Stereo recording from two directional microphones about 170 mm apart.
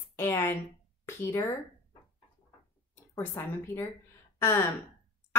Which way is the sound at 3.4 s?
15° left (ahead or behind).